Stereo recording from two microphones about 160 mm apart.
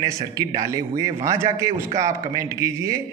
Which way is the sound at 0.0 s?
20° right (ahead or behind).